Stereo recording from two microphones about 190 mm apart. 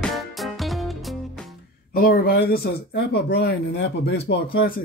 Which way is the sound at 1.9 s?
50° left (ahead or behind).